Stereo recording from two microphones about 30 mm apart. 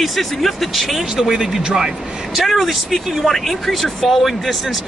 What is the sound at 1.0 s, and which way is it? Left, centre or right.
Speech, centre.